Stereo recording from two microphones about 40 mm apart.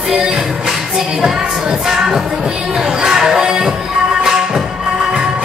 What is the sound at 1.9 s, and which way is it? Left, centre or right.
Music, centre.